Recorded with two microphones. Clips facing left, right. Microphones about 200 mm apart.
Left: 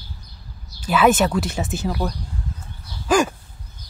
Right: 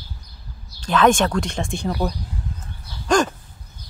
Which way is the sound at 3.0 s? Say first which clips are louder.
Even; 5° left (ahead or behind).